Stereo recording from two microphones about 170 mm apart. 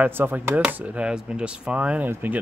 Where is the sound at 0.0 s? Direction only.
10° right (ahead or behind).